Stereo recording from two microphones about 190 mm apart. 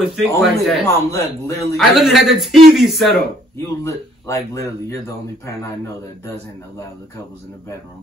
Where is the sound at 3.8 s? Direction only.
15° left (ahead or behind).